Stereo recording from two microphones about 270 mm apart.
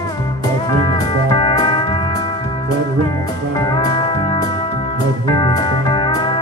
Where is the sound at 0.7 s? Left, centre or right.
Centre.